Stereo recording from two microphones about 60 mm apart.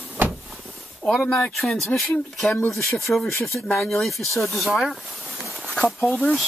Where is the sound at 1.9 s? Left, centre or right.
Left.